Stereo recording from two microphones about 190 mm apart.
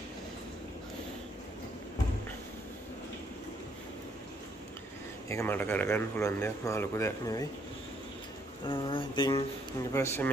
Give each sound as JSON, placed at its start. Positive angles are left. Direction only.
{"t": 5.3, "sound": "speech", "side_deg": 10}
{"t": 8.6, "sound": "speech", "side_deg": 25}
{"t": 9.9, "sound": "speech", "side_deg": 15}